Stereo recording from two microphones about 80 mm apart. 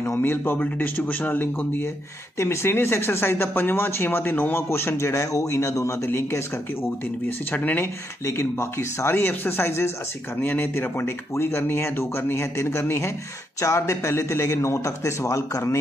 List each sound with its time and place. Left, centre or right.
0.0 s speech: left
8.3 s speech: left